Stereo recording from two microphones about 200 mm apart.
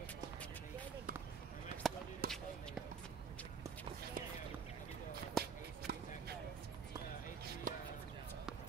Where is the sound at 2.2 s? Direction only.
50° right (ahead or behind).